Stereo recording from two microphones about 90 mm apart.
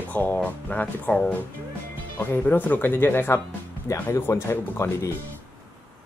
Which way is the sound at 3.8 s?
35° left (ahead or behind).